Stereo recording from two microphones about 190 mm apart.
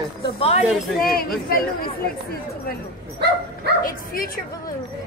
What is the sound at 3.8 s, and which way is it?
Speech, 50° left (ahead or behind).